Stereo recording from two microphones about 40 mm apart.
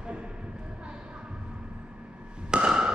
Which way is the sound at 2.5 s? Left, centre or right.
Right.